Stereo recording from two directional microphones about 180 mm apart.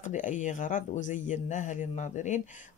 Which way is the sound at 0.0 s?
45° left (ahead or behind).